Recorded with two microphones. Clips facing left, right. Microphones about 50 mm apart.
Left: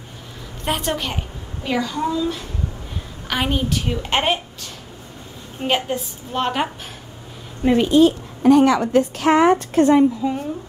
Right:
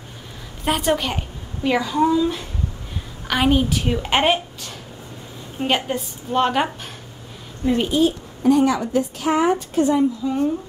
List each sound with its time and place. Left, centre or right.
0.7 s a woman's voice: centre
3.3 s a woman's voice: centre
7.6 s a woman's voice: left